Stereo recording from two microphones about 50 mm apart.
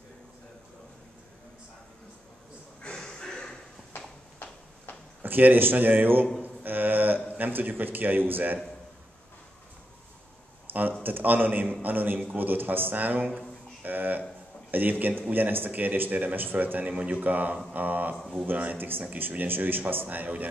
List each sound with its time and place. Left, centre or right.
3.0 s a sound: centre
5.2 s speech: right
6.4 s a sound: right
7.3 s speech: right
10.7 s a man's voice: right
16.8 s speech: right